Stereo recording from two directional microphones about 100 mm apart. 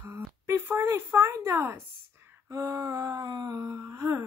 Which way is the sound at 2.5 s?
35° right (ahead or behind).